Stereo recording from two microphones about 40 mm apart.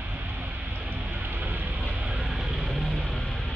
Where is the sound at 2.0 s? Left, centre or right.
Centre.